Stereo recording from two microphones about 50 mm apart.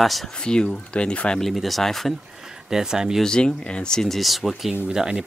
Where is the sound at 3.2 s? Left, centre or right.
Centre.